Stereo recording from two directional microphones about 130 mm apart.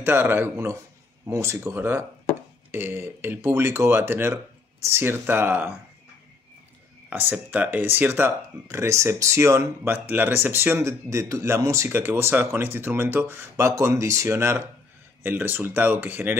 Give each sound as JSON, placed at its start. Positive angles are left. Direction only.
{"t": 0.0, "sound": "speech", "side_deg": -15}
{"t": 7.1, "sound": "speech", "side_deg": -15}